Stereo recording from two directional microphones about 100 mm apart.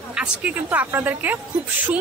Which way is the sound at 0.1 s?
10° right (ahead or behind).